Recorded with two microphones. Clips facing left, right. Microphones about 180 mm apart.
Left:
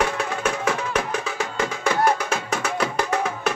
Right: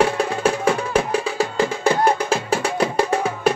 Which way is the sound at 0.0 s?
30° right (ahead or behind).